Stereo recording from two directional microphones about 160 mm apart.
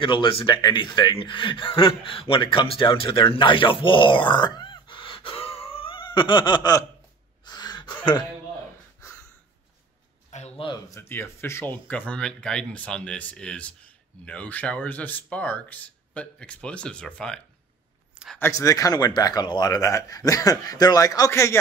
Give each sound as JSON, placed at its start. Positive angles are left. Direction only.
{"t": 0.0, "sound": "speech", "side_deg": 30}
{"t": 2.8, "sound": "groan", "side_deg": 35}
{"t": 7.4, "sound": "gasp", "side_deg": 25}
{"t": 10.6, "sound": "speech", "side_deg": 25}
{"t": 18.1, "sound": "a sound", "side_deg": -5}
{"t": 18.4, "sound": "speech", "side_deg": 20}